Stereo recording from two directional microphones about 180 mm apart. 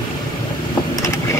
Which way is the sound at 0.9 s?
20° left (ahead or behind).